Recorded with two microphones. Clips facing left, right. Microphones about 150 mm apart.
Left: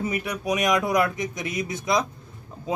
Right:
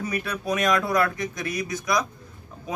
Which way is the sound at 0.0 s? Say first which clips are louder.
Left 1 dB; 20° left (ahead or behind).